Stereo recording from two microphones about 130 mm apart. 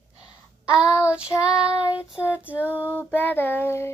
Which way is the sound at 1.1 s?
10° right (ahead or behind).